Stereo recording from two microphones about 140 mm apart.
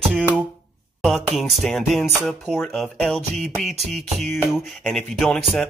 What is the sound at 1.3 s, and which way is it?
Music, centre (ahead or behind).